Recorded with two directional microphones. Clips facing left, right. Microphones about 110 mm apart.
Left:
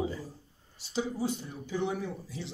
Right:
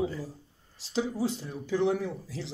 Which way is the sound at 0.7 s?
90° right.